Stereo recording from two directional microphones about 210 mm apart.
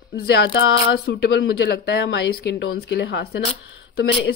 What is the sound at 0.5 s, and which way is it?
Speech, 55° left (ahead or behind).